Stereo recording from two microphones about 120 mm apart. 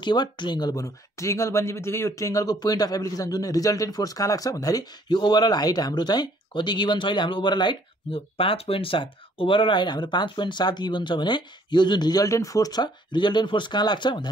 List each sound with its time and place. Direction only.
0.0 s speech: 40° left (ahead or behind)
8.1 s speech: 50° left (ahead or behind)